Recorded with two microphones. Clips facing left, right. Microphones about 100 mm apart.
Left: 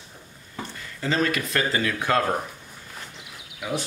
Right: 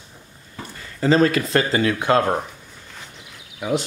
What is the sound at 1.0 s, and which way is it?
Speech, 35° right (ahead or behind).